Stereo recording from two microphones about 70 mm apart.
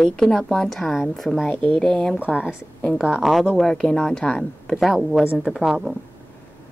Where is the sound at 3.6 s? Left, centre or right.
Centre.